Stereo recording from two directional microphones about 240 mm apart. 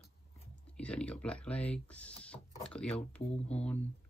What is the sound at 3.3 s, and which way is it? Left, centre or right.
Speech, left.